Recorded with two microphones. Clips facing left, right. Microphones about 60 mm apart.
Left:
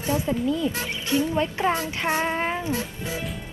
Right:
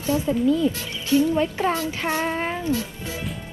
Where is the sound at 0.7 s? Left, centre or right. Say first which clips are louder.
Right 3 dB; left.